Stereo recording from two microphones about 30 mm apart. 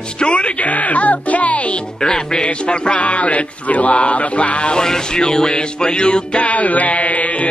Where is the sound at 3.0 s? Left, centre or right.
Left.